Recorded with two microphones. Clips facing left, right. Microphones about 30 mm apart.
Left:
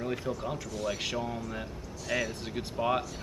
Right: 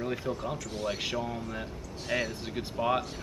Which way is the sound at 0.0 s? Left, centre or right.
Centre.